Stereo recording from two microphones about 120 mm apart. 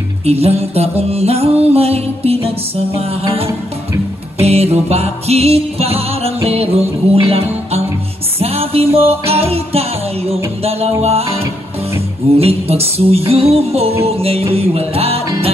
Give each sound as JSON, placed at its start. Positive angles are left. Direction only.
{"t": 0.2, "sound": "music", "side_deg": -60}